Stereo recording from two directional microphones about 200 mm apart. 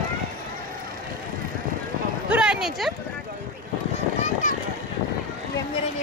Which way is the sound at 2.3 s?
5° right (ahead or behind).